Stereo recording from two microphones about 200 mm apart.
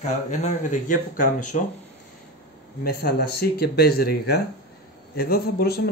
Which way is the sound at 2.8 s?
50° left (ahead or behind).